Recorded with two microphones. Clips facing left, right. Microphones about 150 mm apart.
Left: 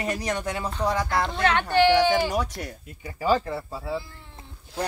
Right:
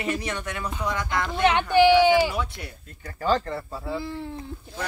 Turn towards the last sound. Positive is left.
turn(degrees=5)  # may be behind; listen again after turning